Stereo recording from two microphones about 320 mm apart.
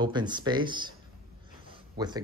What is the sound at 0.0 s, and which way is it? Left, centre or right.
Speech, centre.